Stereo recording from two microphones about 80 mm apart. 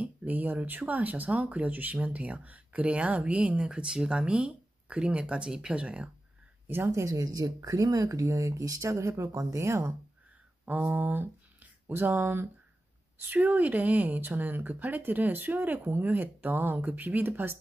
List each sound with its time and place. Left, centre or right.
0.0 s speech: centre
6.9 s speech: right
10.6 s speech: right